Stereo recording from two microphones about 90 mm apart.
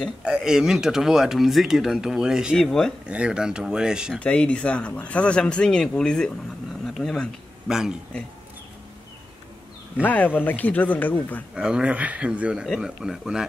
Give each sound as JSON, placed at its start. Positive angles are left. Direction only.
{"t": 0.2, "sound": "speech", "side_deg": -10}
{"t": 2.6, "sound": "speech", "side_deg": 5}
{"t": 3.1, "sound": "speech", "side_deg": -10}
{"t": 4.2, "sound": "speech", "side_deg": 15}
{"t": 7.6, "sound": "speech", "side_deg": -5}
{"t": 10.0, "sound": "speech", "side_deg": 20}
{"t": 11.5, "sound": "speech", "side_deg": -10}